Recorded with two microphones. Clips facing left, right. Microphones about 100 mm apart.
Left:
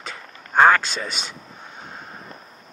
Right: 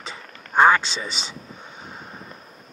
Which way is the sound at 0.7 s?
50° left (ahead or behind).